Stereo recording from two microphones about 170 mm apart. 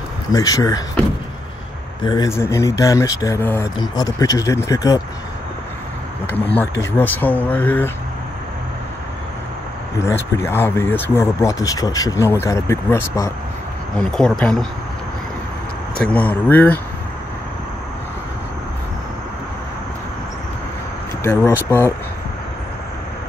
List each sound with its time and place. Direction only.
0.3 s speech: 20° left (ahead or behind)
2.0 s speech: 20° left (ahead or behind)
6.3 s speech: 10° left (ahead or behind)
9.9 s speech: 15° left (ahead or behind)
13.9 s speech: 5° left (ahead or behind)
16.0 s speech: 10° left (ahead or behind)
21.2 s speech: 15° left (ahead or behind)